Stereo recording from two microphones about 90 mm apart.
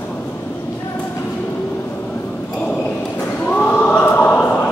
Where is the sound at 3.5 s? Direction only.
15° left (ahead or behind).